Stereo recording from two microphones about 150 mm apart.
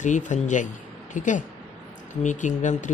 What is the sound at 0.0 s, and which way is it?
A man's voice, 55° left (ahead or behind).